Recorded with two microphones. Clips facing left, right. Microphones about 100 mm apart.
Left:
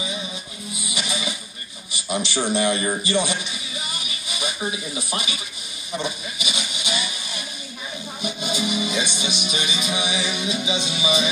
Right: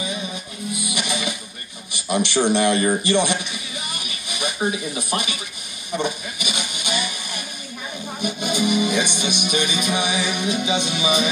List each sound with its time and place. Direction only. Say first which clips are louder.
0.7 s music: right 2 dB; 60° right (ahead or behind)
2.0 s speech: right 5 dB; 60° right (ahead or behind)
5.9 s a sound: right 3 dB; 55° right (ahead or behind)
8.2 s music: right 4 dB; 55° right (ahead or behind)